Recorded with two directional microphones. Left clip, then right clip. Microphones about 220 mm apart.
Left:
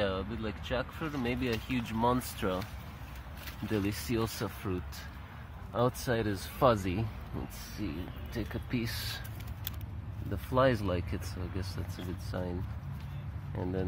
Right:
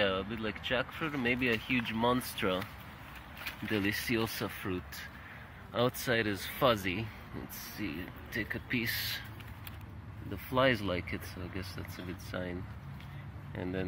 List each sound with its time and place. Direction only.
0.0 s speech: 5° right (ahead or behind)
3.7 s speech: 5° right (ahead or behind)
10.3 s speech: 5° left (ahead or behind)